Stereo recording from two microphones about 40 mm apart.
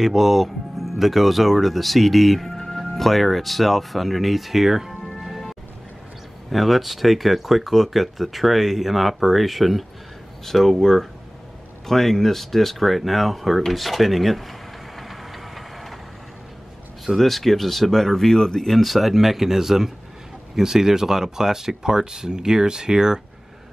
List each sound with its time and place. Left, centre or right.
0.0 s speech: centre
6.5 s speech: centre
15.0 s vehicle: centre
17.0 s speech: centre
18.8 s speech: centre